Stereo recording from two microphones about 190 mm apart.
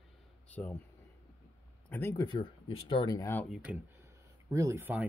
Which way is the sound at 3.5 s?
Centre (ahead or behind).